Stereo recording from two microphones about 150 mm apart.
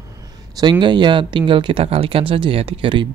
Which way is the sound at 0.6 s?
30° right (ahead or behind).